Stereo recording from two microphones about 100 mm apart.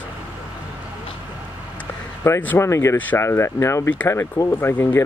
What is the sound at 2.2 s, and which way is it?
Speech, 25° left (ahead or behind).